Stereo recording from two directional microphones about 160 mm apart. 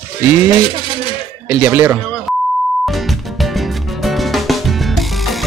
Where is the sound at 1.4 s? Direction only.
15° right (ahead or behind).